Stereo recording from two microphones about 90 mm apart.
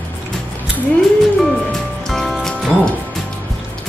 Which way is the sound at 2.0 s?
Centre (ahead or behind).